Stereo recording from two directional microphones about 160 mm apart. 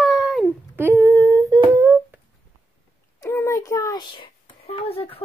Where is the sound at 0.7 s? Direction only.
15° right (ahead or behind).